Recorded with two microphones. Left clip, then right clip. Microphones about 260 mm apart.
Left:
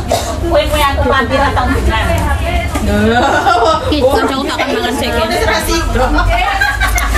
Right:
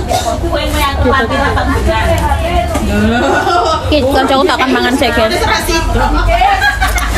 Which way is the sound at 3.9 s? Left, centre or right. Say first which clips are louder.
Right 2 dB; centre.